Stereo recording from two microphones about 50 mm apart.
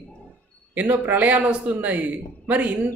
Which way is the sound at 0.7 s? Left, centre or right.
Right.